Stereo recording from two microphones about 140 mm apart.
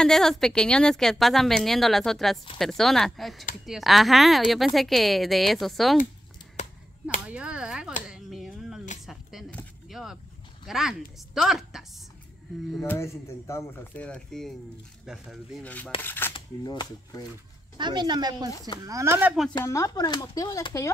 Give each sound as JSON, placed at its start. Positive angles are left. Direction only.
{"t": 0.0, "sound": "speech", "side_deg": 0}
{"t": 7.2, "sound": "speech", "side_deg": -10}
{"t": 8.1, "sound": "a sound", "side_deg": 0}
{"t": 9.8, "sound": "vehicle", "side_deg": 0}
{"t": 10.7, "sound": "a woman's voice", "side_deg": -5}
{"t": 12.8, "sound": "speech", "side_deg": 20}
{"t": 15.6, "sound": "speech", "side_deg": 10}
{"t": 16.6, "sound": "speech", "side_deg": 25}
{"t": 17.7, "sound": "speech", "side_deg": -30}
{"t": 19.6, "sound": "speech", "side_deg": 20}